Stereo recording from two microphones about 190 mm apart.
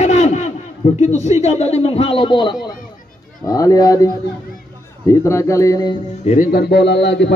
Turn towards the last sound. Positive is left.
turn(degrees=65)  # may be behind; listen again after turning